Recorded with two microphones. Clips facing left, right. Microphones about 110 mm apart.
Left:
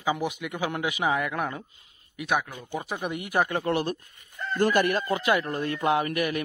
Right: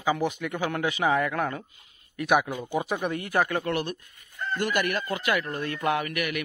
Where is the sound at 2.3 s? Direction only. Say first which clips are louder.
Right 4 dB; 10° right (ahead or behind).